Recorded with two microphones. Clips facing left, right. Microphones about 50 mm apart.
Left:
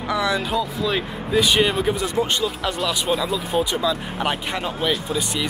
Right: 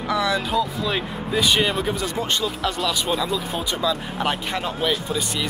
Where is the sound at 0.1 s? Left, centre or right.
Centre.